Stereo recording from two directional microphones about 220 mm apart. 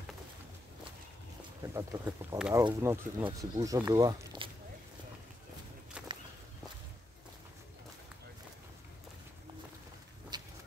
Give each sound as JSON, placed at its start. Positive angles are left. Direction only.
{"t": 1.7, "sound": "speech", "side_deg": -15}
{"t": 6.0, "sound": "walk", "side_deg": -5}
{"t": 10.3, "sound": "a sound", "side_deg": -20}